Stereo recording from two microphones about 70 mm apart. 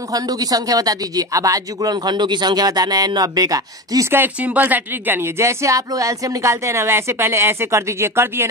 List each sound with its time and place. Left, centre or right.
0.1 s speech: right
4.4 s speech: right
5.4 s a woman's voice: right